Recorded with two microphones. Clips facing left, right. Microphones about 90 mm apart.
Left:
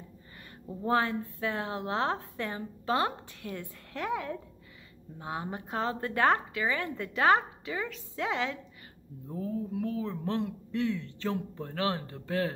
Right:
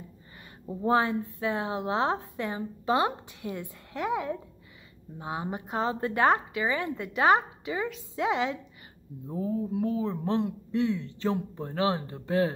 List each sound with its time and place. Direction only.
0.7 s a woman's voice: 15° right (ahead or behind)